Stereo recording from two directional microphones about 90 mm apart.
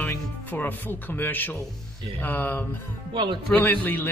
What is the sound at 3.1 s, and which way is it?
Speech, 65° right (ahead or behind).